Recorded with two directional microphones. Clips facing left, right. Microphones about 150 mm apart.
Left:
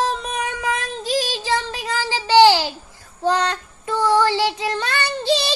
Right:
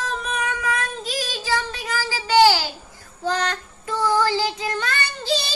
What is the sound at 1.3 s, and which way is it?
Child singing, 30° left (ahead or behind).